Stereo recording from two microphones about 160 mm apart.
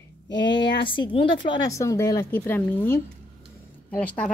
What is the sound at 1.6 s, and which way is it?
A woman's voice, 20° left (ahead or behind).